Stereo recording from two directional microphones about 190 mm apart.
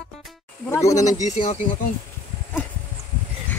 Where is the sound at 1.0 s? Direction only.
35° left (ahead or behind).